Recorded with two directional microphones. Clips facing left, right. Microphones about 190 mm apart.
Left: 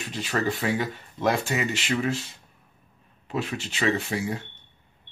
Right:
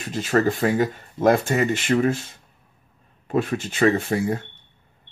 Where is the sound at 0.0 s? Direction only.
45° right (ahead or behind).